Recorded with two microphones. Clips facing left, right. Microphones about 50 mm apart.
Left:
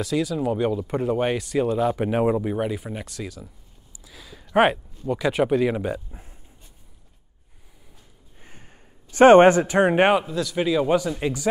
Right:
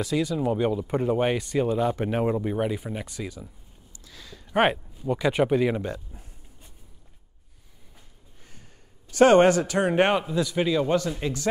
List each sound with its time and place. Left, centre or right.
0.0 s speech: centre
3.9 s a sound: centre
4.6 s speech: centre
5.8 s speech: centre
9.1 s a man's voice: left
10.2 s speech: centre
10.9 s speech: centre